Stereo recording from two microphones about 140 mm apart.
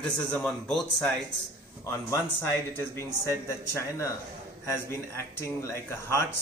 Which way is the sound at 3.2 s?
20° left (ahead or behind).